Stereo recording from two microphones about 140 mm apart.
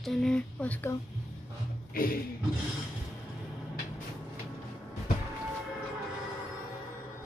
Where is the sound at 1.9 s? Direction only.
90° left.